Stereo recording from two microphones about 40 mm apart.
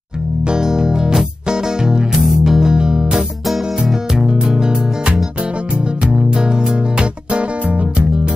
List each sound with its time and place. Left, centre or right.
0.5 s music: centre
2.2 s music: centre
2.7 s music: right